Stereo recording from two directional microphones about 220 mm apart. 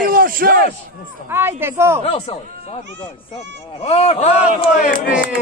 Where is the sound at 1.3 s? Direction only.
10° right (ahead or behind).